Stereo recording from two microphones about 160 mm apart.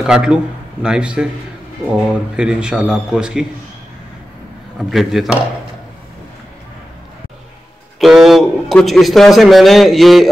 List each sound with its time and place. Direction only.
0.0 s a man's voice: 5° right (ahead or behind)
4.7 s a man's voice: centre (ahead or behind)
8.0 s a man's voice: centre (ahead or behind)